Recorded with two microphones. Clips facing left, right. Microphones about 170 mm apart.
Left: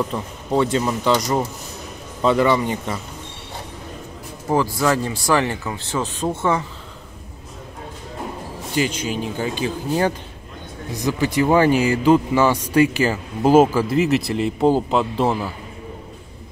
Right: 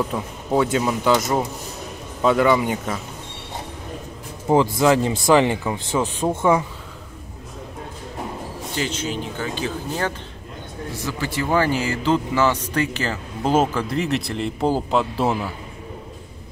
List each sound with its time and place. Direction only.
0.1 s speech: 5° right (ahead or behind)
4.5 s speech: 20° right (ahead or behind)
8.7 s speech: 10° left (ahead or behind)